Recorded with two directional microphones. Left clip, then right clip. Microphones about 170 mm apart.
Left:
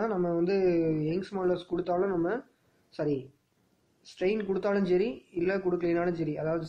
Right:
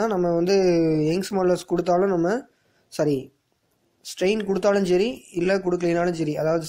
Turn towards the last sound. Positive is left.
turn(degrees=-30)  # may be behind; listen again after turning